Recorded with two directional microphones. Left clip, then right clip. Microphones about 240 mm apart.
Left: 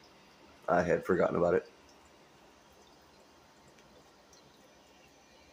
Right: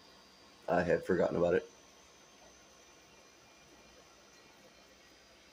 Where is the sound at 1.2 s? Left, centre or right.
Centre.